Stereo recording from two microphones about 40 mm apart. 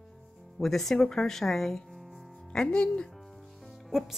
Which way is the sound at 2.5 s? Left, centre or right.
Left.